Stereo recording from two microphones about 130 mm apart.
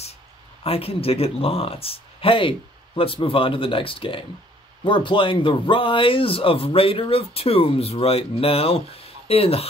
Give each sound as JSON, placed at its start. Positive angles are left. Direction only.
{"t": 0.7, "sound": "speech", "side_deg": 50}